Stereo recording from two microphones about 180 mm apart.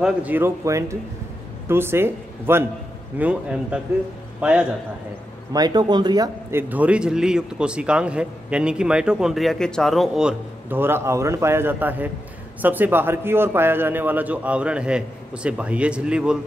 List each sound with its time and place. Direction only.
0.0 s a man's voice: 10° right (ahead or behind)
5.5 s speech: 20° right (ahead or behind)
6.7 s a man's voice: 5° right (ahead or behind)